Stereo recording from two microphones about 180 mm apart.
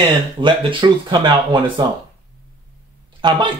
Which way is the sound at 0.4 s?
25° right (ahead or behind).